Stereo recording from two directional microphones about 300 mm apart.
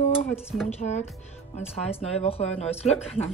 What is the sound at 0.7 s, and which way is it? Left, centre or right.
Speech, left.